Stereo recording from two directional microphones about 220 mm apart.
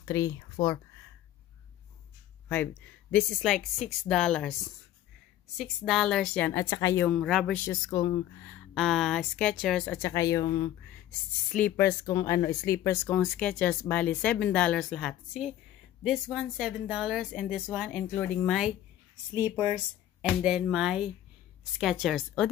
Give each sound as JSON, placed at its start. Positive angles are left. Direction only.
{"t": 0.0, "sound": "speech", "side_deg": 15}
{"t": 2.4, "sound": "speech", "side_deg": 10}
{"t": 5.6, "sound": "speech", "side_deg": 0}
{"t": 8.5, "sound": "speech", "side_deg": 0}
{"t": 9.9, "sound": "speech", "side_deg": 15}
{"t": 11.4, "sound": "speech", "side_deg": 5}
{"t": 19.3, "sound": "speech", "side_deg": -10}